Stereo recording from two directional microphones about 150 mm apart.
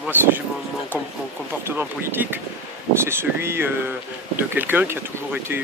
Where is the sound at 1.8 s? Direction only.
15° right (ahead or behind).